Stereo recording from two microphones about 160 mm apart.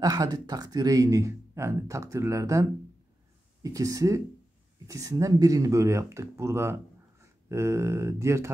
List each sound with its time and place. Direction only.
0.0 s speech: 25° right (ahead or behind)